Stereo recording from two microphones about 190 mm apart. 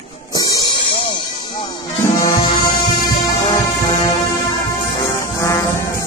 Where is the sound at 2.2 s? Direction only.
25° left (ahead or behind).